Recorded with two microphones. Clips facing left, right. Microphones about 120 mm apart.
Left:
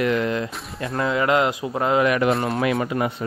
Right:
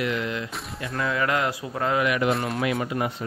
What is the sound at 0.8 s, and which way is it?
A man's voice, 30° left (ahead or behind).